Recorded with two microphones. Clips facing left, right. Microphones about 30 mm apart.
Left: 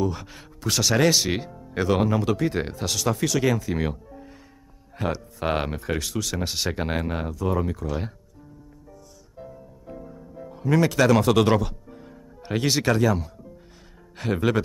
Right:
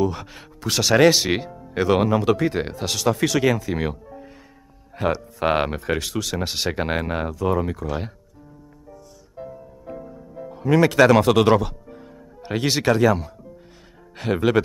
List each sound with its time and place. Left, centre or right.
0.0 s speech: right
9.4 s music: right
10.0 s music: centre
11.6 s speech: centre